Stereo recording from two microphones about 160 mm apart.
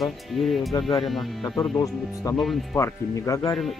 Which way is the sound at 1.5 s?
5° left (ahead or behind).